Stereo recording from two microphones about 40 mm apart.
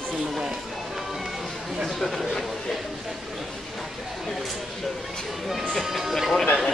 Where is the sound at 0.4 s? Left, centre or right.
Centre.